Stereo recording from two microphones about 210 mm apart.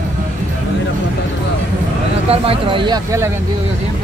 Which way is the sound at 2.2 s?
30° right (ahead or behind).